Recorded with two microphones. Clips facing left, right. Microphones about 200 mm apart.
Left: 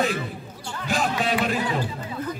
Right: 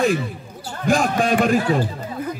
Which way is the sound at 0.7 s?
45° right (ahead or behind).